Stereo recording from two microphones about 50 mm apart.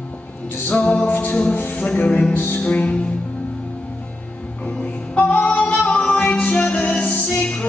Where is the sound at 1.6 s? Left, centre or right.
Left.